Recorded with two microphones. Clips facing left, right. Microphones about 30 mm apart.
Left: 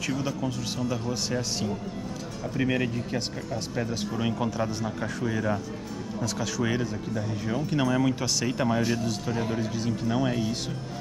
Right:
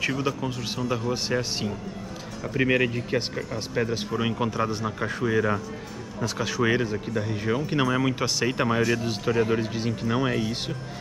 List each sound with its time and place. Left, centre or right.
0.0 s speech: centre